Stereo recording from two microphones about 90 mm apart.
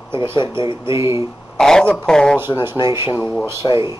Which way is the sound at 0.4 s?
70° left (ahead or behind).